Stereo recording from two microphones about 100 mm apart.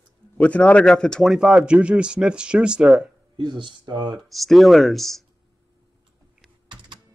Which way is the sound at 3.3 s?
50° right (ahead or behind).